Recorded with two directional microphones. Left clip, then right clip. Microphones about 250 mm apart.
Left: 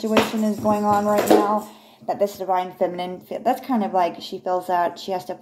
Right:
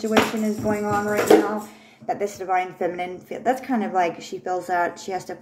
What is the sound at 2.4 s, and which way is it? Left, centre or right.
A woman's voice, centre.